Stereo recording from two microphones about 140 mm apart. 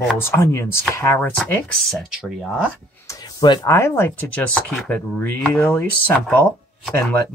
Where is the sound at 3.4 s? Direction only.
25° left (ahead or behind).